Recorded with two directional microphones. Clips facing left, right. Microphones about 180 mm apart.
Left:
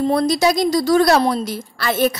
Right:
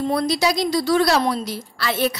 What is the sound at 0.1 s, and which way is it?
A woman's voice, 45° left (ahead or behind).